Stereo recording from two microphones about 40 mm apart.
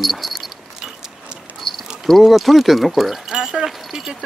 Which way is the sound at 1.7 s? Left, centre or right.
Centre.